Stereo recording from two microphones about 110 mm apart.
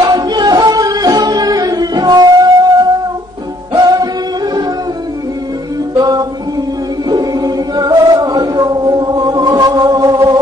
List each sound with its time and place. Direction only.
0.1 s music: 40° right (ahead or behind)
3.7 s music: 35° right (ahead or behind)
5.9 s music: 40° right (ahead or behind)
7.1 s chant: 35° right (ahead or behind)